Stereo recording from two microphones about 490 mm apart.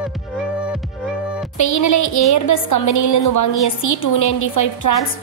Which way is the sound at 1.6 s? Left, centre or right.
Left.